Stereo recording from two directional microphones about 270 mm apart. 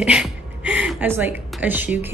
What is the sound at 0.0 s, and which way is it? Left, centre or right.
Speech, centre.